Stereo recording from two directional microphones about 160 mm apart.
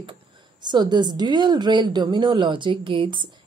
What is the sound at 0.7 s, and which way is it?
A woman's voice, 25° right (ahead or behind).